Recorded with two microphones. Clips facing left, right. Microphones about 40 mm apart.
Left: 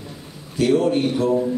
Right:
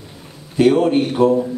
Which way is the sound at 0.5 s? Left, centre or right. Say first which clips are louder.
Right 4 dB; right.